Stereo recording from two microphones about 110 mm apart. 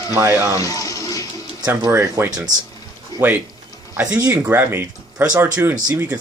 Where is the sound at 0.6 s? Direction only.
30° left (ahead or behind).